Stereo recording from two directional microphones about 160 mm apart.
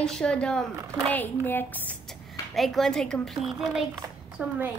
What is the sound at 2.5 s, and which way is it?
A woman's voice, centre (ahead or behind).